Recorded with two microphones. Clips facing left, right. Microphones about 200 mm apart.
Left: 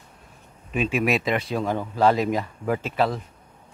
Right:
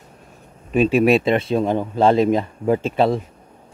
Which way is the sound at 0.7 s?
35° right (ahead or behind).